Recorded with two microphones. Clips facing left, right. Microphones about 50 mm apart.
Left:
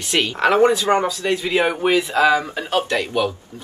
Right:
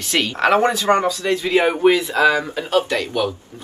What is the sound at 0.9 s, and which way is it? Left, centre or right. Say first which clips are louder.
Mantra: right 1 dB; centre.